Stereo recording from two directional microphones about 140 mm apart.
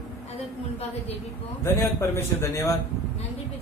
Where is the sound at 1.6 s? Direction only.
15° left (ahead or behind).